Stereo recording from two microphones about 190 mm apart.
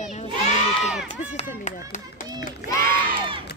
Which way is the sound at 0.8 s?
5° right (ahead or behind).